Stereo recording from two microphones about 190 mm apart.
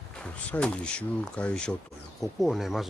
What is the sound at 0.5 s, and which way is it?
A man's voice, 5° left (ahead or behind).